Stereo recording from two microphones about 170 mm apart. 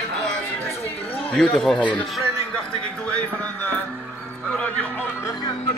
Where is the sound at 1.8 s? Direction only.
5° left (ahead or behind).